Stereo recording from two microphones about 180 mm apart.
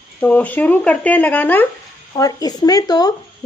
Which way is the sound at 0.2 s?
10° left (ahead or behind).